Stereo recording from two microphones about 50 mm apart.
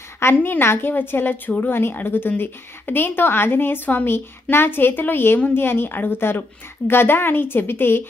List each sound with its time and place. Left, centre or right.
0.2 s a woman's voice: left